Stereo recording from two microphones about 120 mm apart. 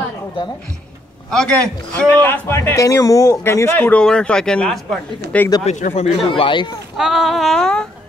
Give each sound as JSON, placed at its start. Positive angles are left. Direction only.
{"t": 1.3, "sound": "speech", "side_deg": 5}
{"t": 5.7, "sound": "speech", "side_deg": 75}
{"t": 6.3, "sound": "speech", "side_deg": 45}
{"t": 7.0, "sound": "speech", "side_deg": 0}